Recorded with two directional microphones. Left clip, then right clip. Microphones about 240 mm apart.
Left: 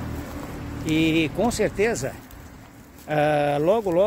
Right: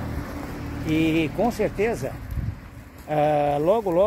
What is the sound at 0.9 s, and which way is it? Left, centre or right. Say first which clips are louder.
Speech: left 1 dB; centre.